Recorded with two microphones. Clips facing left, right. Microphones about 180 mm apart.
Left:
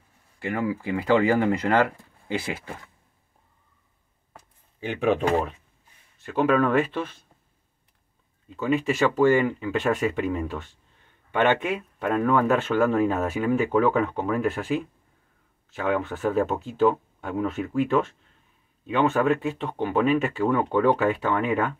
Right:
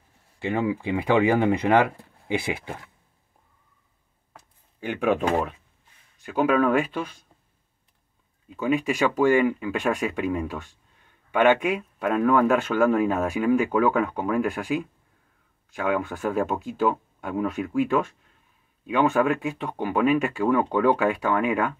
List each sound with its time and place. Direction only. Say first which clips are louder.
0.4 s speech: right 2 dB; 25° right (ahead or behind)
4.3 s a sound: left 1 dB; centre (ahead or behind)
6.2 s speech: even; 5° right (ahead or behind)
8.5 s speech: even; 10° right (ahead or behind)